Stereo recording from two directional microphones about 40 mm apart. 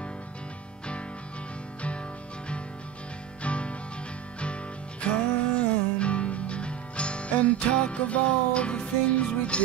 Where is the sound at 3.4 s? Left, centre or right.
Left.